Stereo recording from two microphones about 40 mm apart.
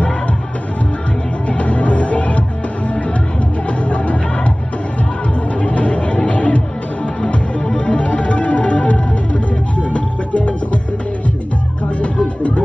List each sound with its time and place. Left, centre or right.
1.5 s music: left
3.6 s music: left
5.6 s music: left
7.2 s music: left
12.0 s music: left